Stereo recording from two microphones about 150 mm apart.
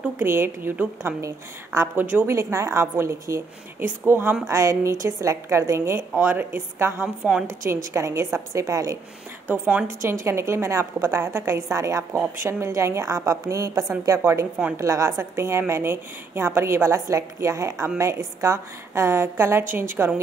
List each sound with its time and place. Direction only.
0.0 s a woman's voice: 15° right (ahead or behind)